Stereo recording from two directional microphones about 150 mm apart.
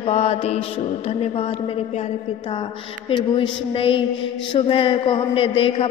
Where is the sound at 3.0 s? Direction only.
35° left (ahead or behind).